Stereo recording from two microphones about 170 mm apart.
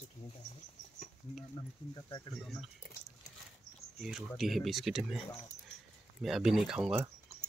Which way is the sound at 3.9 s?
Centre (ahead or behind).